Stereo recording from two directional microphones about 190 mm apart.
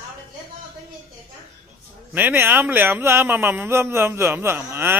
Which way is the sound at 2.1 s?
10° right (ahead or behind).